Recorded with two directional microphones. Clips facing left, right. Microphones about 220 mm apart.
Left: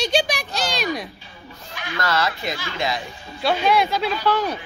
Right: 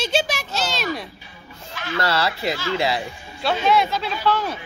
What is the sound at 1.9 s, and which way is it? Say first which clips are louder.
Speech: right 1 dB; 30° right (ahead or behind).